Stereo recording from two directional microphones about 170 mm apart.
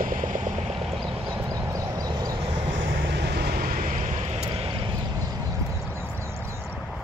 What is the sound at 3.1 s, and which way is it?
Vehicle, 70° right (ahead or behind).